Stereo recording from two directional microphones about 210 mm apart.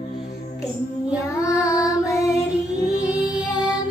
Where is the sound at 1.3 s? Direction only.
15° left (ahead or behind).